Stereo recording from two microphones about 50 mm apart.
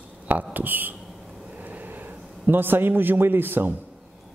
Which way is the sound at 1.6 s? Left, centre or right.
Right.